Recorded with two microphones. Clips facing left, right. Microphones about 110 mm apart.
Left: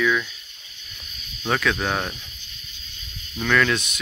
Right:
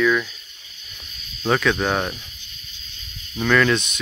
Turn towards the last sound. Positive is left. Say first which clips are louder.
# right 3 dB
turn(degrees=5)  # may be behind; listen again after turning